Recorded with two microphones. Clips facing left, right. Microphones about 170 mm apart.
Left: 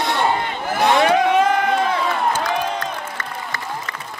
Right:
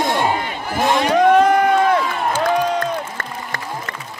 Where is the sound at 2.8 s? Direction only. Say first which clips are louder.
Right 4 dB; 50° right (ahead or behind).